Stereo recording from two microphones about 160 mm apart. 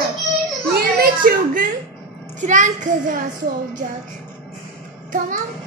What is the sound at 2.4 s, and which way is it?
Speech, 50° right (ahead or behind).